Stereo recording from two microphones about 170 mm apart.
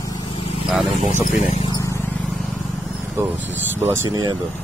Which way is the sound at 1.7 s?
15° left (ahead or behind).